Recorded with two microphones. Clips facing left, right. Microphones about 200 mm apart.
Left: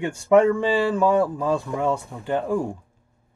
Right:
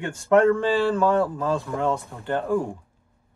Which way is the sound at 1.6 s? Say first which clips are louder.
Left 1 dB; centre (ahead or behind).